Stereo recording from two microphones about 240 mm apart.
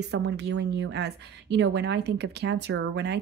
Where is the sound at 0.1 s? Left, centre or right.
Right.